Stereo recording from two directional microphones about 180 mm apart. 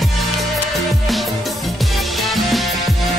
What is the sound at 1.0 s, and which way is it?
Music, centre (ahead or behind).